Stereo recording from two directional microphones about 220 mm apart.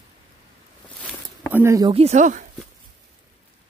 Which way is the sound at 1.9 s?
30° right (ahead or behind).